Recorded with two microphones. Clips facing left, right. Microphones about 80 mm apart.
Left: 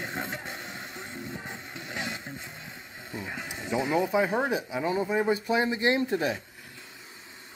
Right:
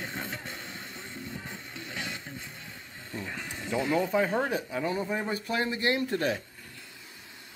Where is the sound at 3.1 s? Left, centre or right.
Centre.